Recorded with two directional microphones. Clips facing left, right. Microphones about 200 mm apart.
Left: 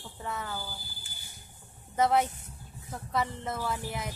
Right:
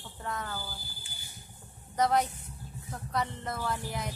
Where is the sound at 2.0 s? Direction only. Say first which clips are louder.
Left 2 dB; 5° left (ahead or behind).